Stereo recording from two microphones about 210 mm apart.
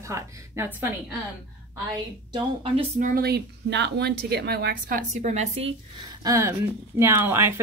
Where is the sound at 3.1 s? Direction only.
45° right (ahead or behind); by 5.7 s 30° right (ahead or behind).